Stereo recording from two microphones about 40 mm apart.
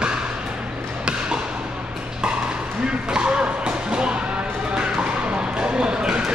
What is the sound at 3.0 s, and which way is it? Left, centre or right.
Music, right.